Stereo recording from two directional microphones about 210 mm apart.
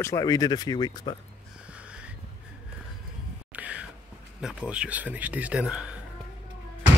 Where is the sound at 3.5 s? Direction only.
5° right (ahead or behind).